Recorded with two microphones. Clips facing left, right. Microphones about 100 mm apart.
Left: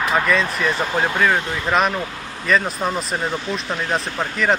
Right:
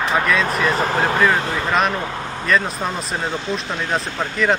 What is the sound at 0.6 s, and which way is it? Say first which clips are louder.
Speech: right 2 dB; 40° right (ahead or behind).